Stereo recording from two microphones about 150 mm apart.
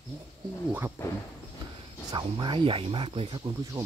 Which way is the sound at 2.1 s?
30° right (ahead or behind).